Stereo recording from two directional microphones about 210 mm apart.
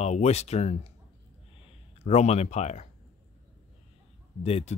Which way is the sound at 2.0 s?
30° left (ahead or behind).